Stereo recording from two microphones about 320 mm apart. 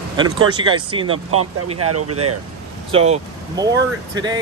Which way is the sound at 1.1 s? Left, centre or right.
Right.